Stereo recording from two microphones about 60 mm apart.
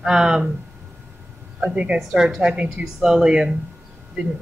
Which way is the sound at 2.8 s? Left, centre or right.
Centre.